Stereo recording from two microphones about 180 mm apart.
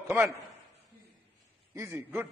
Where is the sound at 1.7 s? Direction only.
15° right (ahead or behind).